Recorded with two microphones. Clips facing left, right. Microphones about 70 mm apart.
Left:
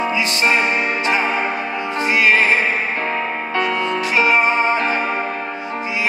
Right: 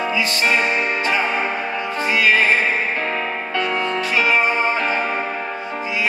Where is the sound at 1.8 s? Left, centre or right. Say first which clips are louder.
Left 2 dB; left.